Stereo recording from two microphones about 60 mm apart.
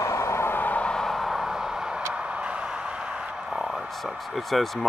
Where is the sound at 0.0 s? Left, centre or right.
Left.